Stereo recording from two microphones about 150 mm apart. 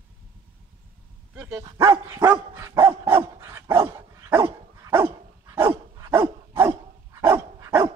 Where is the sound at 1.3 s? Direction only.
10° right (ahead or behind).